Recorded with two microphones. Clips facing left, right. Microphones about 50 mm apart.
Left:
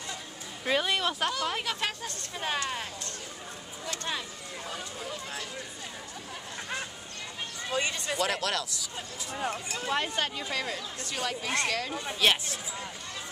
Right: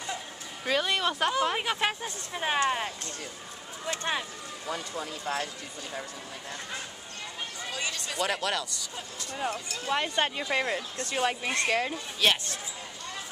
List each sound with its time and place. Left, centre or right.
0.7 s speech: centre
1.3 s speech: centre
7.7 s speech: left
8.2 s speech: centre
10.1 s speech: right
12.2 s speech: centre